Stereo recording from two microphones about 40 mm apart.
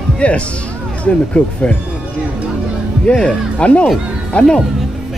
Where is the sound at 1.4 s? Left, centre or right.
Left.